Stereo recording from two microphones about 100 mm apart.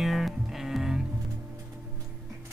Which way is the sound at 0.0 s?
5° right (ahead or behind).